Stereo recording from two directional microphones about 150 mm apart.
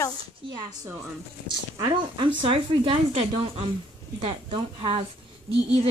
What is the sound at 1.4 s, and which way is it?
A woman's voice, 30° right (ahead or behind).